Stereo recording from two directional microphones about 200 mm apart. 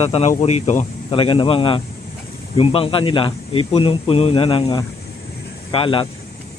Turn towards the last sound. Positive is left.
turn(degrees=25)  # may be behind; listen again after turning